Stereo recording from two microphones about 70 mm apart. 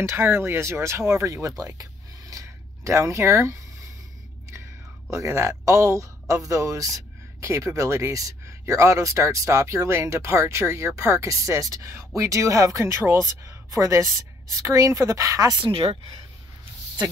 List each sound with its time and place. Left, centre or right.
0.0 s speech: right
1.6 s a sound: right
5.1 s speech: right